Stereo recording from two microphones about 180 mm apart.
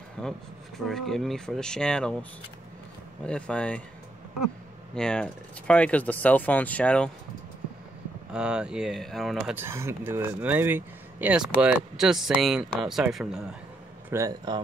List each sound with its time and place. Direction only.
0.2 s speech: 5° left (ahead or behind)
3.3 s speech: 5° left (ahead or behind)
4.9 s speech: 5° left (ahead or behind)
8.3 s speech: 5° right (ahead or behind)
9.6 s speech: 15° right (ahead or behind)
14.1 s speech: 20° right (ahead or behind)